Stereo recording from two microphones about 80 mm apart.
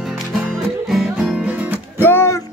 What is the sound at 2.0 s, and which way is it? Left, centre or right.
Music, left.